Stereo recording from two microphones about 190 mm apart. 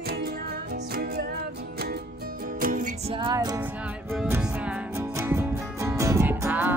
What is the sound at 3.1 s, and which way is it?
Music, 25° right (ahead or behind).